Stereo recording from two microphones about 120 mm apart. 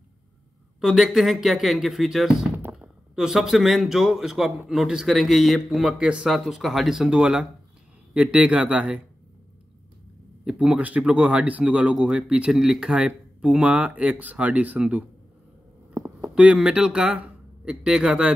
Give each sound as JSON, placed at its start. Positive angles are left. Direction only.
{"t": 0.7, "sound": "a man's voice", "side_deg": 0}
{"t": 10.4, "sound": "speech", "side_deg": -10}
{"t": 15.9, "sound": "a sound", "side_deg": -25}
{"t": 16.3, "sound": "speech", "side_deg": -5}